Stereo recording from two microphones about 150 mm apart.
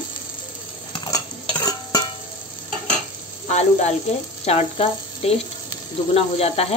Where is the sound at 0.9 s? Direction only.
30° left (ahead or behind).